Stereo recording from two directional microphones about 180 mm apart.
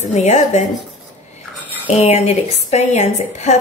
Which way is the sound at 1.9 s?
35° left (ahead or behind).